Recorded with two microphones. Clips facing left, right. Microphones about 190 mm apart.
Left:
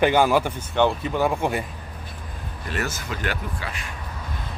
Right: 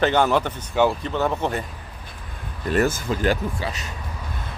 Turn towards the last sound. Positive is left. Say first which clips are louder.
# right 7 dB
turn(degrees=-35)  # may be behind; listen again after turning